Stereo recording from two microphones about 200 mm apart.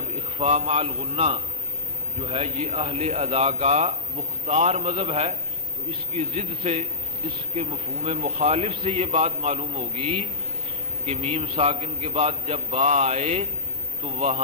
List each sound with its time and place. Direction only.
0.4 s a man's voice: 30° right (ahead or behind)